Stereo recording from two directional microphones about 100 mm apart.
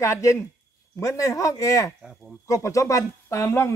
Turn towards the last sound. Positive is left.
turn(degrees=25)  # may be behind; listen again after turning